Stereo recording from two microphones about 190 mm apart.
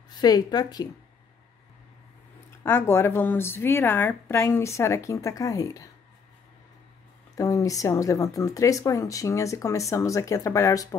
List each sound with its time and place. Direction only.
0.1 s a woman's voice: 20° left (ahead or behind)
2.6 s speech: 10° left (ahead or behind)
7.3 s speech: 15° left (ahead or behind)